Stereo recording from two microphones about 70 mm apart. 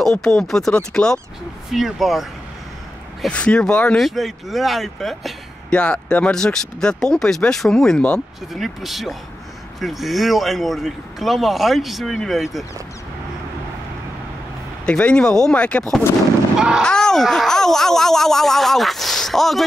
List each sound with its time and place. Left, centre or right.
0.0 s speech: centre
1.7 s a man's voice: centre
3.3 s speech: centre
4.0 s a man's voice: centre
5.7 s speech: centre
8.5 s a man's voice: centre
14.9 s speech: centre
16.5 s speech: centre
16.8 s a man's voice: centre